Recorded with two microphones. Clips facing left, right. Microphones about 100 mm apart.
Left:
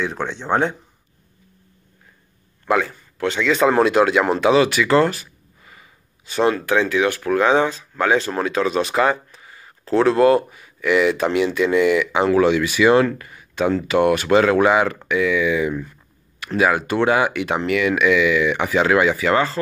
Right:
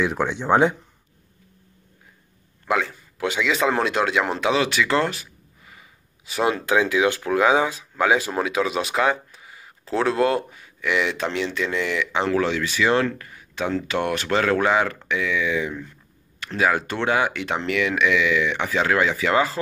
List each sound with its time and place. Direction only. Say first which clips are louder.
0.0 s speech: right 2 dB; 10° right (ahead or behind)
2.6 s a man's voice: left 4 dB; centre (ahead or behind)
6.5 s speech: left 1 dB; 15° right (ahead or behind)
7.4 s speech: left 2 dB; 5° right (ahead or behind)